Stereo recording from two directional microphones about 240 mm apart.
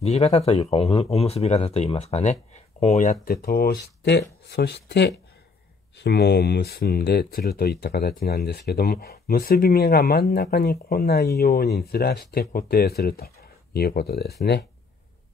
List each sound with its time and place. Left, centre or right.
0.0 s speech: left